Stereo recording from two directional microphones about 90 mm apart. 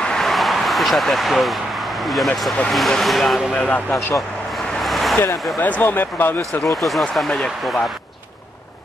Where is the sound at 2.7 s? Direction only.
5° left (ahead or behind); by 4.1 s 25° left (ahead or behind).